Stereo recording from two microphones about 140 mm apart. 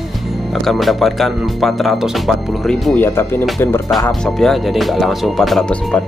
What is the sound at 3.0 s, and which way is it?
Speech, 15° left (ahead or behind).